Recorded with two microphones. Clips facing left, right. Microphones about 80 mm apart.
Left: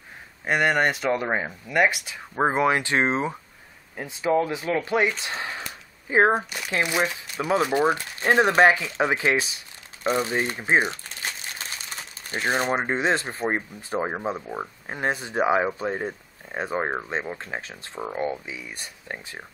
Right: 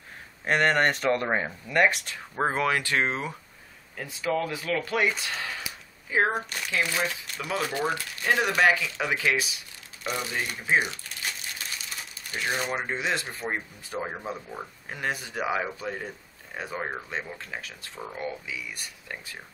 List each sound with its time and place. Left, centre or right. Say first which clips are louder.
0.5 s speech: left 1 dB; centre
2.3 s speech: left 4 dB; centre
5.3 s a sound: left 2 dB; left
6.0 s speech: left 6 dB; left